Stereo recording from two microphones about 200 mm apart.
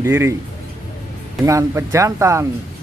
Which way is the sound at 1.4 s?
15° right (ahead or behind).